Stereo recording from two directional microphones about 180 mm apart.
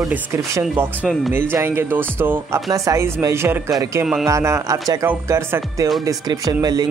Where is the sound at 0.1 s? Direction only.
10° right (ahead or behind).